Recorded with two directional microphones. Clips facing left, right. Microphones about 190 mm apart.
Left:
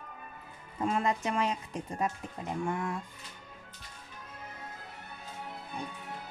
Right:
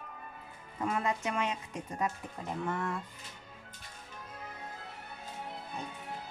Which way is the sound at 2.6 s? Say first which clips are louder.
Left 1 dB; 10° left (ahead or behind).